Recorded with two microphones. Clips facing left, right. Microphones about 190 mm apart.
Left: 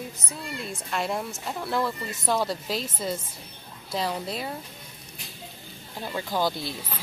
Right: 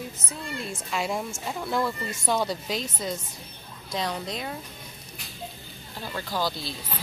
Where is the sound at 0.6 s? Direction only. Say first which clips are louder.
Left 1 dB; centre (ahead or behind).